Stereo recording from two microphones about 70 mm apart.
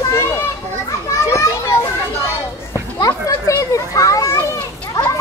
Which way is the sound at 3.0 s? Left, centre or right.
Left.